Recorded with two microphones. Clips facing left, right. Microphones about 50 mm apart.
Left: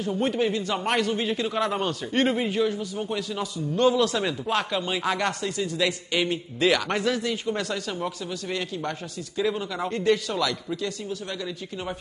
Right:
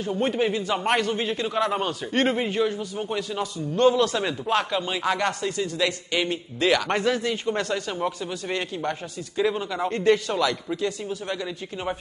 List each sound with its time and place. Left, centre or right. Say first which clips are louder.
0.0 s a man's voice: right 1 dB; centre
6.9 s a man's voice: right 2 dB; centre